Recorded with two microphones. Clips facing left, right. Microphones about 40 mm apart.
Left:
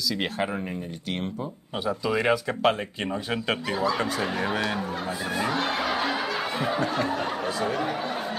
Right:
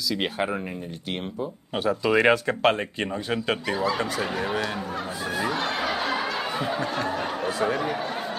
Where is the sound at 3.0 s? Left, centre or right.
Centre.